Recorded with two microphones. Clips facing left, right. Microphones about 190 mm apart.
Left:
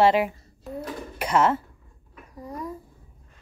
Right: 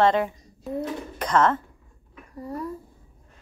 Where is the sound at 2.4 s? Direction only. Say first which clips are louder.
Right 3 dB; 15° left (ahead or behind).